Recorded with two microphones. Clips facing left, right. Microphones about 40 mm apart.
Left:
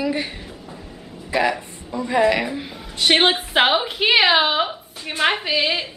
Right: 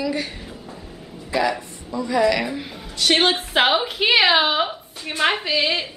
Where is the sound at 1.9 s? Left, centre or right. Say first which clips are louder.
Left 1 dB; left.